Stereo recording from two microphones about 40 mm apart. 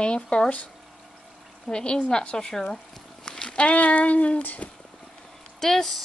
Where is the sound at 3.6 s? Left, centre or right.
Left.